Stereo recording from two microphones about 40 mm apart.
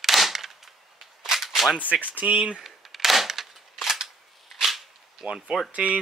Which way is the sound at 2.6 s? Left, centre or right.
Centre.